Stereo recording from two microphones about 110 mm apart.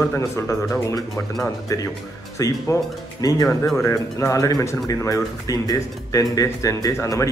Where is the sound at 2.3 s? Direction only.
30° left (ahead or behind).